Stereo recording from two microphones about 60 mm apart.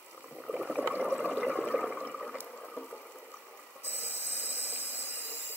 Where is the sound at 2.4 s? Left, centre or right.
Centre.